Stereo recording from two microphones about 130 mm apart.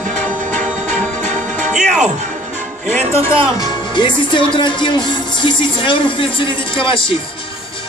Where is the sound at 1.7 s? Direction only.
5° right (ahead or behind).